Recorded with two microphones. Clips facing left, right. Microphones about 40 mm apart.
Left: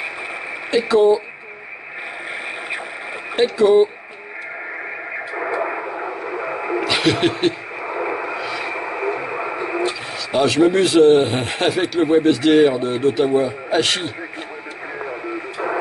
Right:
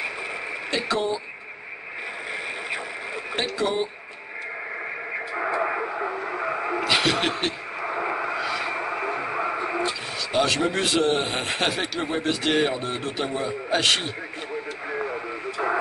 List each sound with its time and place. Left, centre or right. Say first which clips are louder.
0.7 s speech: left 11 dB; centre
3.3 s speech: left 12 dB; centre
5.3 s radio: left 2 dB; centre
6.8 s a sound: left 5 dB; centre
8.7 s radio: left 4 dB; centre
10.3 s speech: left 8 dB; centre